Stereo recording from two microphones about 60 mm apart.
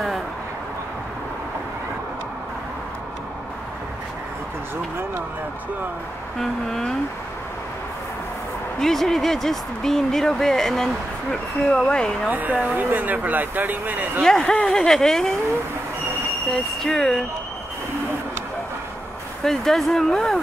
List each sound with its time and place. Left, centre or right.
6.4 s speech: centre
8.7 s speech: centre
12.3 s speech: right
14.2 s speech: centre
16.5 s speech: centre
19.4 s speech: centre